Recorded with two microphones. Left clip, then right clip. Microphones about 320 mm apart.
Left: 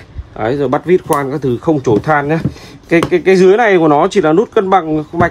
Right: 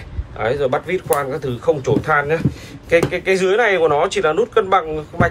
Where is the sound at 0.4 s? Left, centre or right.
Left.